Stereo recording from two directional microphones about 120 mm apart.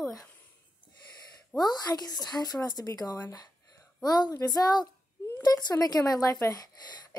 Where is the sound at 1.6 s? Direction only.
30° left (ahead or behind).